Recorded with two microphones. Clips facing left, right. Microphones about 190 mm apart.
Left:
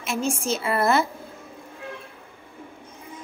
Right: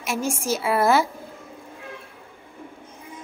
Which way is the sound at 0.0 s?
10° right (ahead or behind).